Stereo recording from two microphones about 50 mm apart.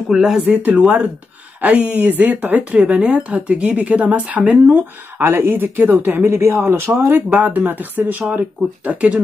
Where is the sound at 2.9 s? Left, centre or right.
Right.